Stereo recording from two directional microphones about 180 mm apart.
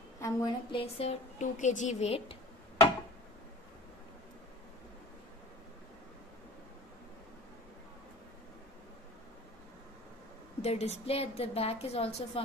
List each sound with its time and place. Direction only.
0.2 s a woman's voice: 20° left (ahead or behind)
1.4 s a woman's voice: 45° left (ahead or behind)
10.6 s a woman's voice: 35° left (ahead or behind)